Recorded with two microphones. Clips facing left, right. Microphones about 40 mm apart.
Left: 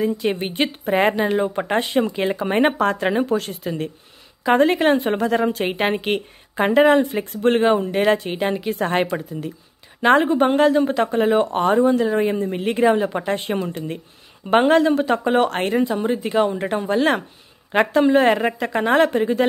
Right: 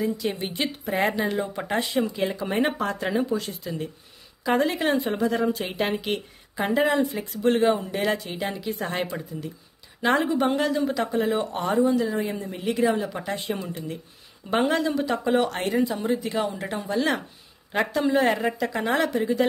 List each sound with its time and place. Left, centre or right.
0.0 s a woman's voice: left
10.0 s a woman's voice: left